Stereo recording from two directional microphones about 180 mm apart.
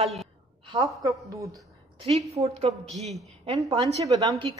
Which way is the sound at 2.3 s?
35° right (ahead or behind).